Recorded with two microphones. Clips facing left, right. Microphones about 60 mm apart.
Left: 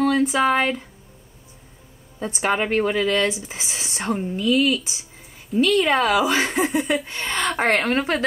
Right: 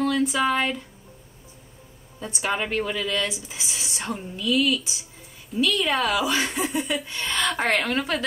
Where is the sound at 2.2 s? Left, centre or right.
Left.